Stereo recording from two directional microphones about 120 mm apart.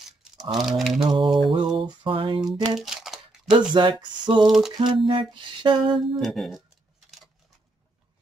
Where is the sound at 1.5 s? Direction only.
45° right (ahead or behind).